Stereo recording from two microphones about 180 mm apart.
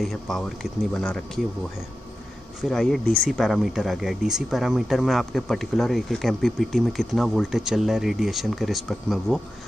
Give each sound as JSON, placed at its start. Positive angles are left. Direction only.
{"t": 0.0, "sound": "speech", "side_deg": 0}
{"t": 2.6, "sound": "speech", "side_deg": 0}